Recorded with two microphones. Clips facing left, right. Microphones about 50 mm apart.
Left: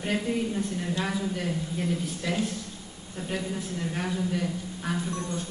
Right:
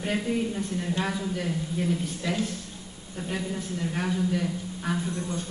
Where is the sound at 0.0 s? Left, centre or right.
Centre.